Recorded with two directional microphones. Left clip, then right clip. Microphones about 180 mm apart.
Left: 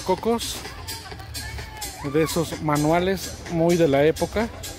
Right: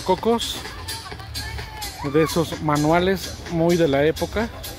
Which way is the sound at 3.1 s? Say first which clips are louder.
Right 2 dB; 70° left (ahead or behind).